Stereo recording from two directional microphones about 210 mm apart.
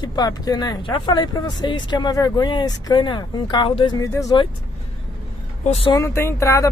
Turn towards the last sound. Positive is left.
turn(degrees=15)  # may be behind; listen again after turning